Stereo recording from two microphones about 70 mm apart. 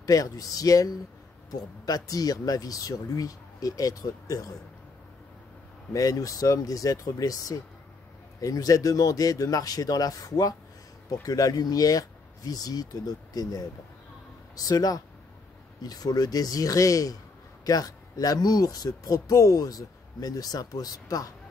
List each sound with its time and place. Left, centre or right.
0.0 s speech: left
5.9 s speech: left